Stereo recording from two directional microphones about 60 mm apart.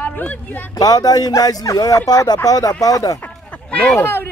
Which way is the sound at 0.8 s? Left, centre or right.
Left.